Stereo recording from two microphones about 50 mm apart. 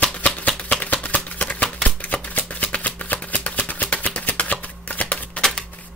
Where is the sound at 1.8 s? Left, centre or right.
Left.